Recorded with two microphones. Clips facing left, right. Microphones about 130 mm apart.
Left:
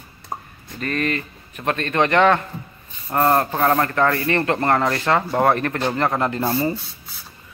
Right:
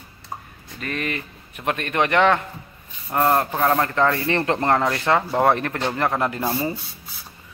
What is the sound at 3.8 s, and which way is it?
A man's voice, 15° right (ahead or behind).